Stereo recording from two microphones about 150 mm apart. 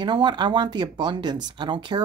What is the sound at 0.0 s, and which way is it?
Speech, 30° right (ahead or behind).